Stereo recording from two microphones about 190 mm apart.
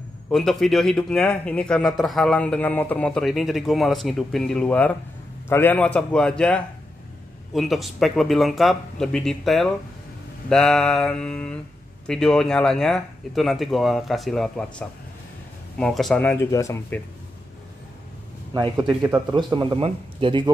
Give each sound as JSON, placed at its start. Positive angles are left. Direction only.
{"t": 0.3, "sound": "a man's voice", "side_deg": 0}
{"t": 18.5, "sound": "a man's voice", "side_deg": -25}